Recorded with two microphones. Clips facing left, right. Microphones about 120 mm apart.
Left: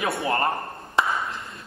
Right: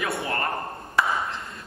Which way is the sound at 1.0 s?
25° left (ahead or behind).